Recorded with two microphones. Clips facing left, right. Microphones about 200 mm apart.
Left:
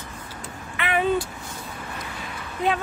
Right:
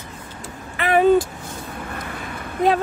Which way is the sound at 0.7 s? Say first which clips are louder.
Right 7 dB; 40° right (ahead or behind).